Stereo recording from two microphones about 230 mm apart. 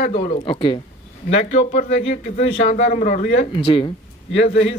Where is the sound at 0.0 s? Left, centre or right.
Left.